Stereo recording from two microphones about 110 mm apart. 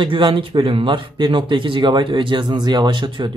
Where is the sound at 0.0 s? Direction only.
50° right (ahead or behind).